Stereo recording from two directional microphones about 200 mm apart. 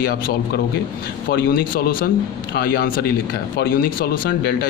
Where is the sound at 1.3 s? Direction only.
50° left (ahead or behind).